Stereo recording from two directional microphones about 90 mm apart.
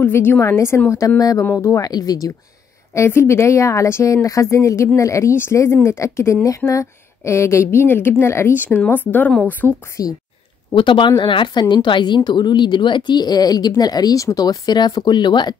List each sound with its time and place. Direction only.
0.0 s speech: 25° left (ahead or behind)
1.4 s a woman's voice: 25° left (ahead or behind)
1.7 s a woman's voice: 45° left (ahead or behind)
2.9 s a woman's voice: 30° left (ahead or behind)
10.0 s speech: 40° left (ahead or behind)
10.7 s a woman's voice: 65° left (ahead or behind)